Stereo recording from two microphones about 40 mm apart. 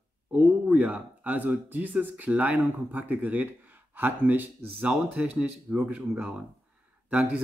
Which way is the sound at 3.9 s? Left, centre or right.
Right.